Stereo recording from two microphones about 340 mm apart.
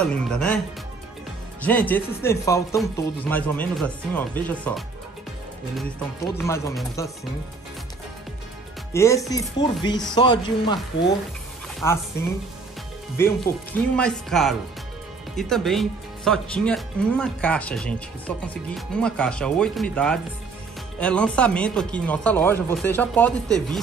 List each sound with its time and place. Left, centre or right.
0.0 s speech: centre
1.6 s speech: centre
6.3 s speech: centre
8.9 s speech: centre
11.8 s speech: centre